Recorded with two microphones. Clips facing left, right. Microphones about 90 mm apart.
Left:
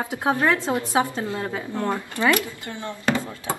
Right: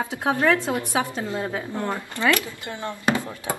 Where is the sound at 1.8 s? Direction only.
15° left (ahead or behind).